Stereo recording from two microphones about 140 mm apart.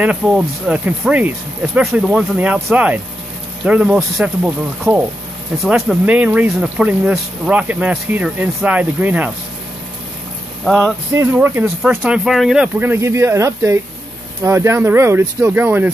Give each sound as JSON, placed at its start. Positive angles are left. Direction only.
{"t": 0.0, "sound": "speech", "side_deg": -10}
{"t": 5.6, "sound": "speech", "side_deg": 0}
{"t": 10.6, "sound": "a sound", "side_deg": 0}
{"t": 11.1, "sound": "speech", "side_deg": -15}
{"t": 12.3, "sound": "speech", "side_deg": 0}